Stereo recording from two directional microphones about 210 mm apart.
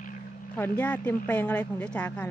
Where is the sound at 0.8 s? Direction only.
5° left (ahead or behind).